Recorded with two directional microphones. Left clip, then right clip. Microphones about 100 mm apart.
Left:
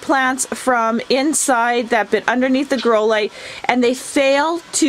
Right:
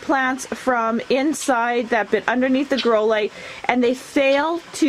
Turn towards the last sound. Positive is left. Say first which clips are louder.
# left 3 dB
turn(degrees=10)  # may be behind; listen again after turning